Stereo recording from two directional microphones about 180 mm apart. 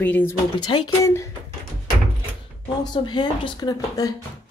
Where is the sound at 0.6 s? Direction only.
25° left (ahead or behind).